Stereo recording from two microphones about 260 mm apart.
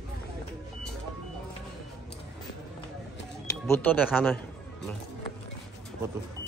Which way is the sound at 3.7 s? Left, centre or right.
Centre.